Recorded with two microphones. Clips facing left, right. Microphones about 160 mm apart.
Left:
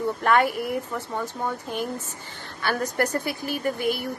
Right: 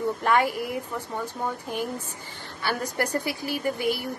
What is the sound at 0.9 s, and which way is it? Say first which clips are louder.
A woman's voice: left 2 dB; 10° right (ahead or behind).